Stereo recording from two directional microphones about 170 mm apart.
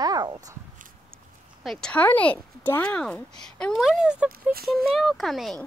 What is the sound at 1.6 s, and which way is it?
Speech, centre (ahead or behind).